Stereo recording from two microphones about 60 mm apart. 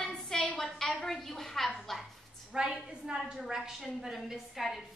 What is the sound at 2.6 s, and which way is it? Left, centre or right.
A woman's voice, centre.